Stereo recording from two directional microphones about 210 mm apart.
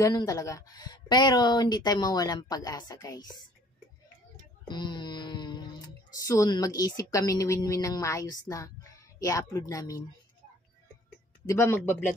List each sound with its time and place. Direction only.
0.0 s speech: 15° left (ahead or behind)
4.6 s music: 20° left (ahead or behind)
6.1 s speech: 15° left (ahead or behind)
11.4 s speech: 10° left (ahead or behind)